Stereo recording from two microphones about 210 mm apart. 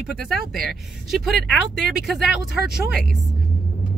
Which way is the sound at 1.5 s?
55° left (ahead or behind).